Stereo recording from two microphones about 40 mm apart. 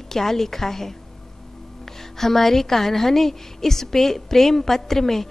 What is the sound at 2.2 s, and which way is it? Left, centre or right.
A woman's voice, centre.